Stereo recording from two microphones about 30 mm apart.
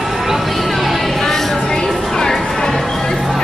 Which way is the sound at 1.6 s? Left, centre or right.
Left.